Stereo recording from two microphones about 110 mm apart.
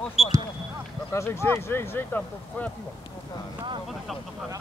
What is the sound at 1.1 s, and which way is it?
Speech, 25° left (ahead or behind).